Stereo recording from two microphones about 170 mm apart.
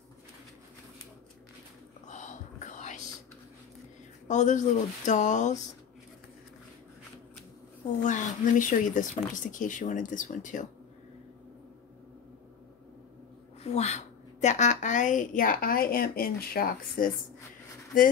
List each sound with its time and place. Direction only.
2.0 s whispering: 45° left (ahead or behind)
4.3 s speech: 45° left (ahead or behind)
8.0 s speech: 45° left (ahead or behind)
13.6 s a woman's voice: 40° left (ahead or behind); by 17.1 s 60° left (ahead or behind)